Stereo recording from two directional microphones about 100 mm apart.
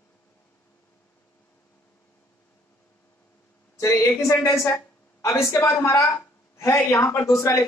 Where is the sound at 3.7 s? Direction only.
25° left (ahead or behind).